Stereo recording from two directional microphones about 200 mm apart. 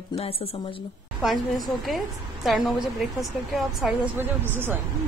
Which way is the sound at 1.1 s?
Centre (ahead or behind).